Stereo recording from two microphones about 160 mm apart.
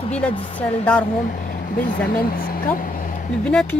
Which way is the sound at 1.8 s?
65° left (ahead or behind).